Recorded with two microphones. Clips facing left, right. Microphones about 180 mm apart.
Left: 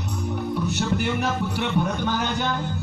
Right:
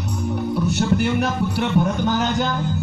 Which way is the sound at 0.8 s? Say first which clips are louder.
Right 5 dB; 45° right (ahead or behind).